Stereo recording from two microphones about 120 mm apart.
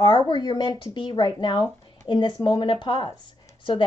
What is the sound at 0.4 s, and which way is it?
A woman's voice, 40° left (ahead or behind).